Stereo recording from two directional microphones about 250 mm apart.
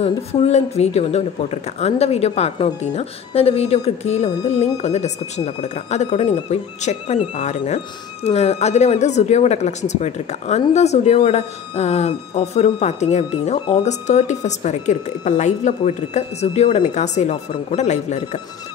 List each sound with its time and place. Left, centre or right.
0.0 s speech: left